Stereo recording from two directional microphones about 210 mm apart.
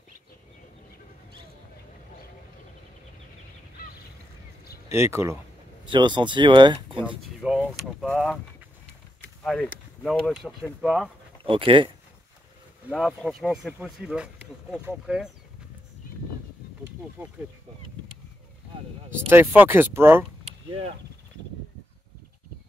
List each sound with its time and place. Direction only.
4.8 s speech: 10° right (ahead or behind)
7.1 s speech: 5° right (ahead or behind)
11.4 s speech: 25° right (ahead or behind)
12.9 s speech: centre (ahead or behind)
17.2 s speech: 10° right (ahead or behind)
19.1 s speech: 10° right (ahead or behind)